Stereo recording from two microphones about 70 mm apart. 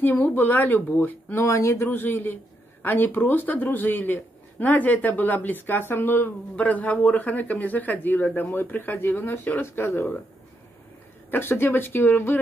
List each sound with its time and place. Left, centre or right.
0.0 s a man's voice: left
1.3 s speech: left
1.9 s a man's voice: left
11.2 s a man's voice: left